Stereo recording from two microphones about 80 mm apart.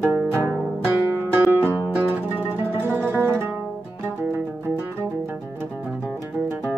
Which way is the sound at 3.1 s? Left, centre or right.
Right.